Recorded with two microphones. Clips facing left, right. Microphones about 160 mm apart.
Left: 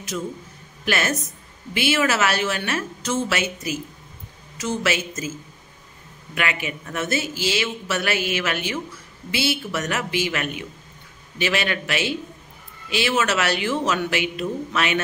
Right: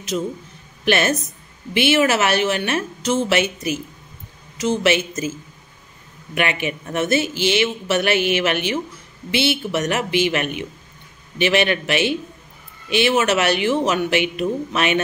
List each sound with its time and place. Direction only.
0.1 s speech: 25° right (ahead or behind)
6.3 s speech: 20° right (ahead or behind)